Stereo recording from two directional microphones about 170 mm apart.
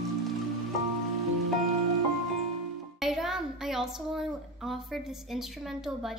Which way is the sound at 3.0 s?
Centre (ahead or behind).